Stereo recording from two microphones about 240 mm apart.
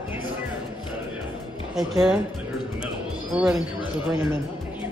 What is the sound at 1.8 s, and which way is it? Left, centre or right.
Speech, centre.